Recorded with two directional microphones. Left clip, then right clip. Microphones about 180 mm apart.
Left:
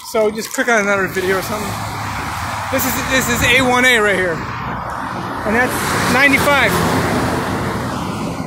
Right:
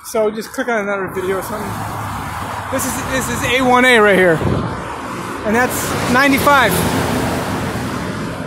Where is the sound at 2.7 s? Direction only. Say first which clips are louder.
Left 3 dB; centre (ahead or behind).